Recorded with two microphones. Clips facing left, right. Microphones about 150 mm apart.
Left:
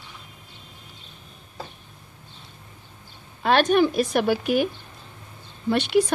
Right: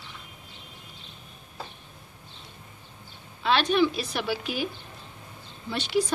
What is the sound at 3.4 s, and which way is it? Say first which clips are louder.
Speech: left 4 dB; 50° left (ahead or behind).